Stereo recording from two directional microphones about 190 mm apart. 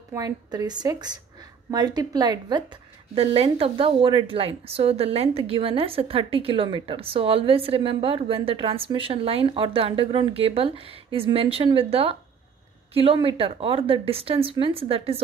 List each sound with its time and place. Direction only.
0.1 s a woman's voice: 20° right (ahead or behind)